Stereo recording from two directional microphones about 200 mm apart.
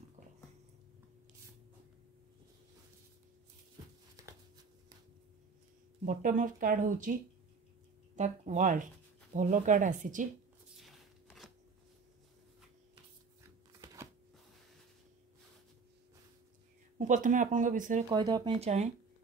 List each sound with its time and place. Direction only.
4.2 s a sound: 15° right (ahead or behind)
6.0 s speech: 40° right (ahead or behind)
8.2 s speech: 40° right (ahead or behind)
10.8 s a sound: centre (ahead or behind)
17.0 s speech: 40° right (ahead or behind)
18.1 s speech: 20° right (ahead or behind)